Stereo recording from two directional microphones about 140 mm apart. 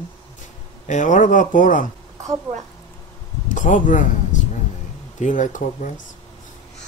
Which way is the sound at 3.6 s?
70° left (ahead or behind).